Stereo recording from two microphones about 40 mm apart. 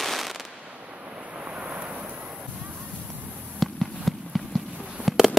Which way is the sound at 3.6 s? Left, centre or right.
Centre.